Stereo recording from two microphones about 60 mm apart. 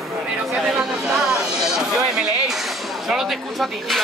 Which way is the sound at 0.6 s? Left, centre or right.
Centre.